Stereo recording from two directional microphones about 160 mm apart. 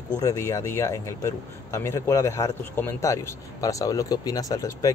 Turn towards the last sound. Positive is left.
turn(degrees=20)  # may be behind; listen again after turning